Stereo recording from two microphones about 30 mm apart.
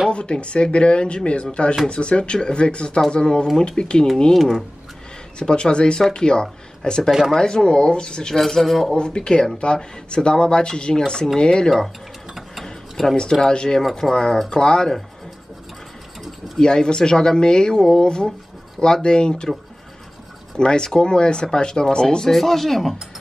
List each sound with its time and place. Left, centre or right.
0.1 s speech: left
4.4 s speech: centre
5.4 s speech: left
6.4 s speech: centre
8.4 s speech: centre
8.9 s speech: left
13.1 s speech: left
16.5 s speech: left
20.5 s speech: left
22.3 s speech: centre